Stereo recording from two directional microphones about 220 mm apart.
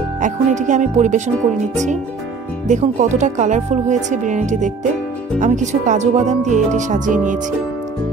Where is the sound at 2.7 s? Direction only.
35° right (ahead or behind).